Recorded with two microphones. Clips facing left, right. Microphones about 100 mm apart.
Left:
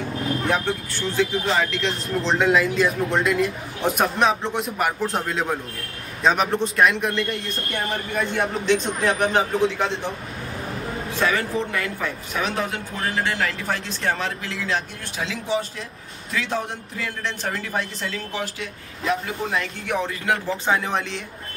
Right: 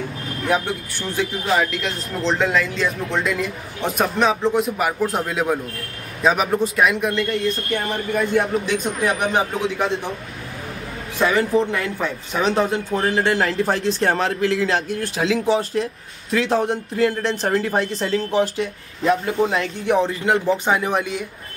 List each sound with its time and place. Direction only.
0.5 s speech: 15° right (ahead or behind)
11.1 s speech: 15° right (ahead or behind); by 15.2 s 45° right (ahead or behind)
15.2 s speech: 90° right
15.8 s speech: 40° right (ahead or behind); by 21.2 s 10° right (ahead or behind)